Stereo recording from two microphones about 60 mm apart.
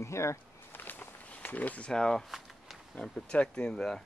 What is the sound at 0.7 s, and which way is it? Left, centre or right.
Walk, left.